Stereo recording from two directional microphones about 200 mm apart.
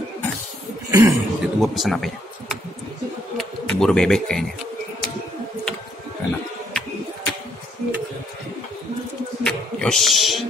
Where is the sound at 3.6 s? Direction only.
5° left (ahead or behind).